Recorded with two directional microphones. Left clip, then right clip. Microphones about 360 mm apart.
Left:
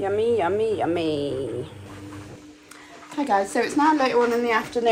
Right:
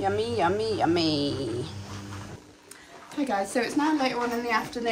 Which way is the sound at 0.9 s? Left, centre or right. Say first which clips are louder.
Left 1 dB; right.